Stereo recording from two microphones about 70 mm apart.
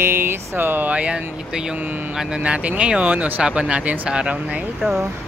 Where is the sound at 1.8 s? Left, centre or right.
Right.